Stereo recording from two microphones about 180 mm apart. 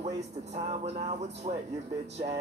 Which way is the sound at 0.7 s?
35° right (ahead or behind).